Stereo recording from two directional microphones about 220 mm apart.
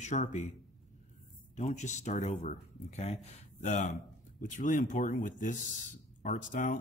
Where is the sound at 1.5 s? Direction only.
35° left (ahead or behind).